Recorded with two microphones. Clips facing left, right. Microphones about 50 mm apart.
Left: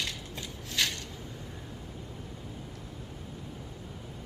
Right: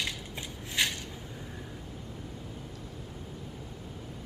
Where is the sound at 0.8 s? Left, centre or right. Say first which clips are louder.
Right 1 dB; centre.